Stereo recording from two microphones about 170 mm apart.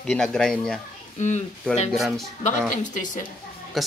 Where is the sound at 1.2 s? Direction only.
45° left (ahead or behind).